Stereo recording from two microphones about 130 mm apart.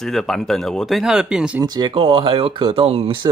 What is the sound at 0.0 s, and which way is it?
Speech, 5° left (ahead or behind).